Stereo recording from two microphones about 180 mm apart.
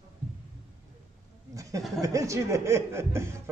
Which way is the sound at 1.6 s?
20° right (ahead or behind).